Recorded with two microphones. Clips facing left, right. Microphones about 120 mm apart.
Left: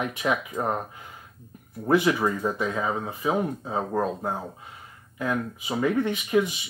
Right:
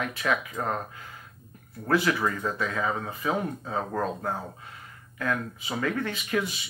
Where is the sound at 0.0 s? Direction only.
20° left (ahead or behind).